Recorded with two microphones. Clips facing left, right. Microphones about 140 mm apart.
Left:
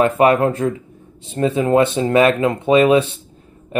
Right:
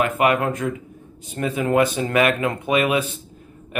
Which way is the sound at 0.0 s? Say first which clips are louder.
Left 6 dB; 35° left (ahead or behind).